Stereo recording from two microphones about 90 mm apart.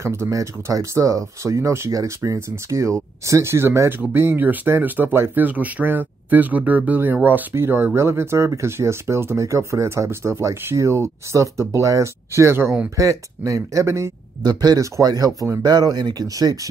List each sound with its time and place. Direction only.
0.0 s speech: 35° right (ahead or behind)
14.4 s speech: 50° right (ahead or behind)